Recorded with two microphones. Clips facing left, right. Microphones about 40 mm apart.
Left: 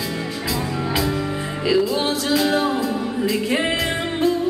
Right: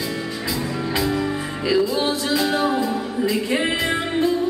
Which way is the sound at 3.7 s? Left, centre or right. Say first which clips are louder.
Right 1 dB; centre.